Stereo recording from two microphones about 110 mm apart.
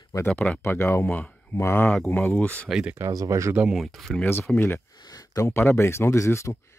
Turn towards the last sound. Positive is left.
turn(degrees=25)  # may be behind; listen again after turning